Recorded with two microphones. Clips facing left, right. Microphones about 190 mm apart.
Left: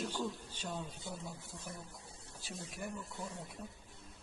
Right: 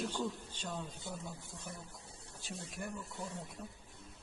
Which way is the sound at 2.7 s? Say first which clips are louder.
Even; centre (ahead or behind).